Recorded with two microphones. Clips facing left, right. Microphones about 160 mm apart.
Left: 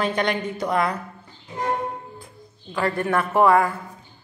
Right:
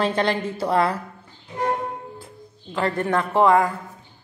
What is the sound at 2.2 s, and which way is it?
Music, 25° right (ahead or behind).